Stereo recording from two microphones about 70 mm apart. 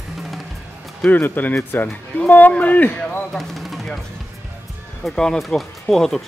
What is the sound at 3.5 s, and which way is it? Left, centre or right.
Music, centre.